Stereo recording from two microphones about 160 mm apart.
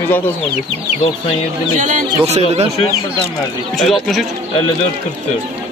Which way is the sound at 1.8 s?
45° right (ahead or behind).